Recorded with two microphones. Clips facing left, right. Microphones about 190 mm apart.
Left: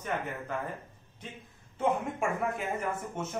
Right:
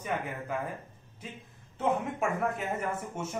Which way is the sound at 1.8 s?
Centre (ahead or behind).